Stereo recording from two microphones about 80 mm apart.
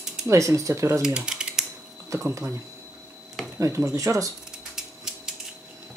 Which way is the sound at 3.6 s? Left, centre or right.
Right.